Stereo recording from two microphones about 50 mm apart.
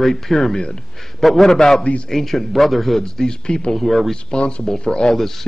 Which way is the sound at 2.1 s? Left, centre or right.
Centre.